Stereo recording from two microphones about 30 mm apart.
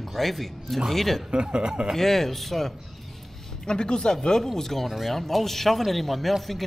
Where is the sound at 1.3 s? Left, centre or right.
Right.